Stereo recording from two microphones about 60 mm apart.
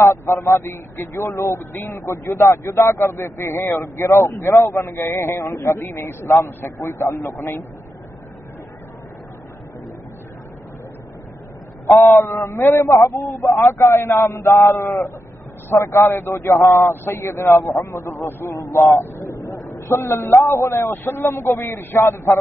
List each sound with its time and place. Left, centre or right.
0.0 s speech: left
7.3 s speech: left
12.3 s a man's voice: left
19.2 s a sound: left
19.9 s speech: left